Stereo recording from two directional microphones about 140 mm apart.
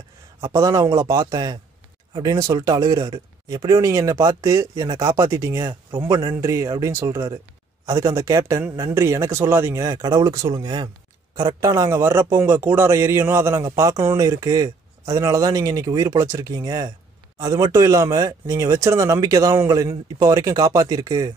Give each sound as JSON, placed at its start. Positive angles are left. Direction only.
{"t": 0.4, "sound": "a man's voice", "side_deg": -25}